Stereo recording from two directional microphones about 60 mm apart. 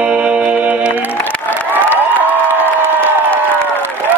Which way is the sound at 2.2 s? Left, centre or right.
Right.